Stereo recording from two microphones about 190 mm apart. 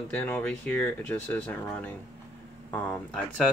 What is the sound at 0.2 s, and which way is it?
Speech, 10° left (ahead or behind).